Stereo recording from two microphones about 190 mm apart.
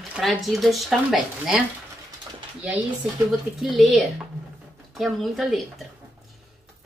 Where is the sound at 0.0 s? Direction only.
Centre (ahead or behind).